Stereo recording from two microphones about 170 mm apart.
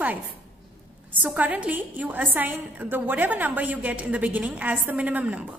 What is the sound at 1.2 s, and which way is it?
A woman's voice, 10° right (ahead or behind).